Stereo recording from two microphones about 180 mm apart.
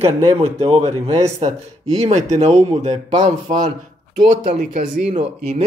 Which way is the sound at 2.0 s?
40° right (ahead or behind).